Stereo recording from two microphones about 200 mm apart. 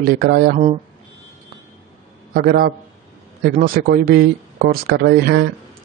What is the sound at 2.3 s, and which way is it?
Speech, 45° right (ahead or behind).